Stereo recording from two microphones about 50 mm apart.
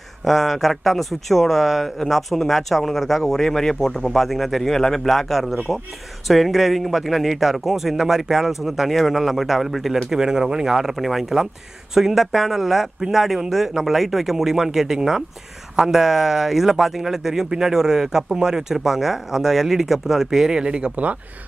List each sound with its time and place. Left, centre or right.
0.2 s speech: centre; by 21.2 s right